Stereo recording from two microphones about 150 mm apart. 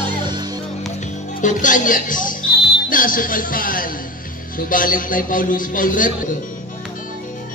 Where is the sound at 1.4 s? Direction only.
60° left (ahead or behind).